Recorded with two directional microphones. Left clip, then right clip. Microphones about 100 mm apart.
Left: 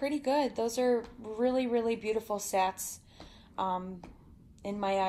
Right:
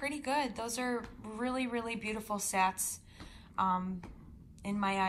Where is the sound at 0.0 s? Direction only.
5° left (ahead or behind).